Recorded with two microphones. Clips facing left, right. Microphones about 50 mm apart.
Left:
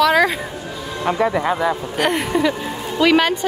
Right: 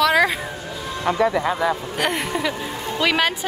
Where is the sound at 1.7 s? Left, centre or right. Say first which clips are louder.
Left 3 dB; centre.